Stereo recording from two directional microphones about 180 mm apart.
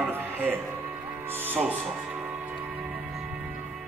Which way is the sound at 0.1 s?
10° right (ahead or behind).